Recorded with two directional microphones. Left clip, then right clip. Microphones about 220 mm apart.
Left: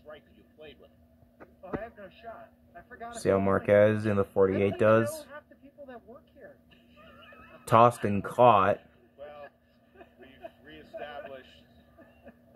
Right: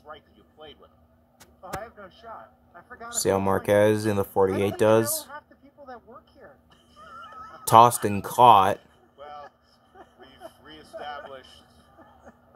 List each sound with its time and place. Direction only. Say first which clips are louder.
3.1 s speech: right 2 dB; 30° right (ahead or behind)
7.6 s speech: right 5 dB; 30° right (ahead or behind)